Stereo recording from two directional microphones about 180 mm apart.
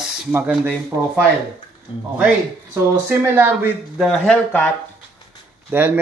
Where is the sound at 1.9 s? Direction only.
25° left (ahead or behind).